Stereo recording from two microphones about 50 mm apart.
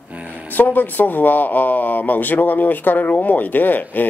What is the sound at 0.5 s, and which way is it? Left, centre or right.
Speech, left.